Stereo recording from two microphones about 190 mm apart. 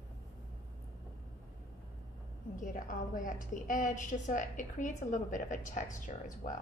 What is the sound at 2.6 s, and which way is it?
A woman's voice, 45° left (ahead or behind).